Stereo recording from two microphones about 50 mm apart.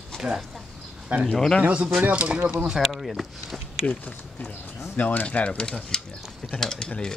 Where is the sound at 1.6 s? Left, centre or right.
Right.